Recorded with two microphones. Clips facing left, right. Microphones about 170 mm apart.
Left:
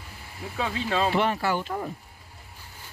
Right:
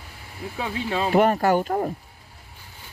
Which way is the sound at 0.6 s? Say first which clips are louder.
Even; 15° right (ahead or behind).